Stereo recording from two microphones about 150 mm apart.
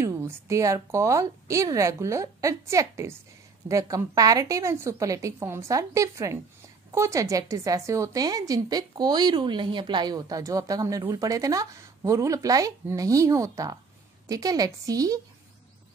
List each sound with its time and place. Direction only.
0.0 s speech: 20° right (ahead or behind)